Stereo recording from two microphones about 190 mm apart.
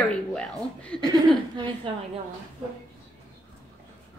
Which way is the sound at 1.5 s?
25° right (ahead or behind).